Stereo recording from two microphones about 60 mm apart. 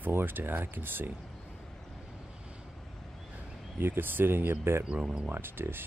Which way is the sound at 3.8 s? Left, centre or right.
Right.